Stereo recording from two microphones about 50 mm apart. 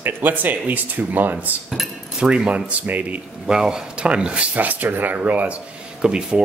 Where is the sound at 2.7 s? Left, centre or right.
Right.